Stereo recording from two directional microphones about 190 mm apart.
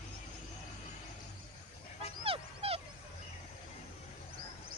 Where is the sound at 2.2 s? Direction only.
30° right (ahead or behind).